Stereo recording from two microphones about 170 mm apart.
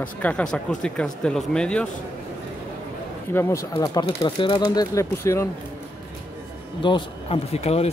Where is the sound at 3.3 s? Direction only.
15° left (ahead or behind).